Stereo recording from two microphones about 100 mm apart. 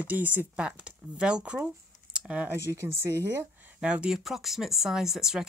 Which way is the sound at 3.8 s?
10° right (ahead or behind).